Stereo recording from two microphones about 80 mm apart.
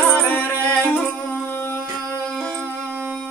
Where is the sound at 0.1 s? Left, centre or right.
Left.